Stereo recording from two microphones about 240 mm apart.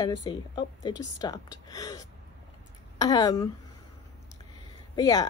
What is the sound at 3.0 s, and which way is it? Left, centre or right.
Speech, centre.